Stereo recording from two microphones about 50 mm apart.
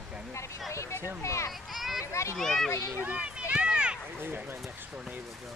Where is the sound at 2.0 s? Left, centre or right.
Left.